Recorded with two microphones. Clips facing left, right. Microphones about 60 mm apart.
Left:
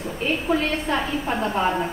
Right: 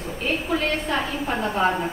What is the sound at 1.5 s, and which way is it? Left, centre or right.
Speech, centre.